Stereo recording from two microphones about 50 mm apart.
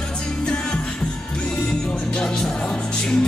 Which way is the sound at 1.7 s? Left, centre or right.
Centre.